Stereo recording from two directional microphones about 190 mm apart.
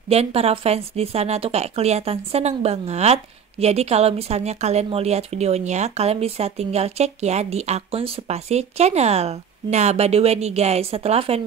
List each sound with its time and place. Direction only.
0.1 s speech: 35° right (ahead or behind)